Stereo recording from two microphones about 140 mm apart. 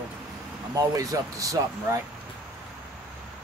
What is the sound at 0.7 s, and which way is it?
Speech, 25° right (ahead or behind).